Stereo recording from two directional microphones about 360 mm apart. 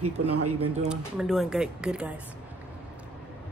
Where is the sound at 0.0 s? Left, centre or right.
Right.